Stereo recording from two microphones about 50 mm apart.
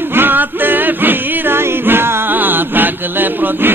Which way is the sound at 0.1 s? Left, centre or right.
Right.